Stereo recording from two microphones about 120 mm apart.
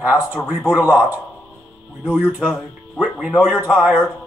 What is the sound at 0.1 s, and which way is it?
Speech, 15° left (ahead or behind).